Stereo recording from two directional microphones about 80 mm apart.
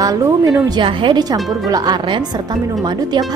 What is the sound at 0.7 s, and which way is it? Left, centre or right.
Speech, right.